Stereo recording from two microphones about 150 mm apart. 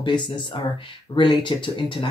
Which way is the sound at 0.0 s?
30° left (ahead or behind).